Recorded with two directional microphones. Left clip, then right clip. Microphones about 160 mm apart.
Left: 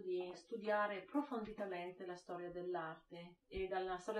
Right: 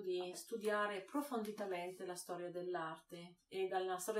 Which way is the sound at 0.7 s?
10° right (ahead or behind).